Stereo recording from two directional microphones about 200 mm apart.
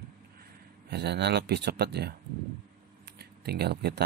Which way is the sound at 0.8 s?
55° right (ahead or behind).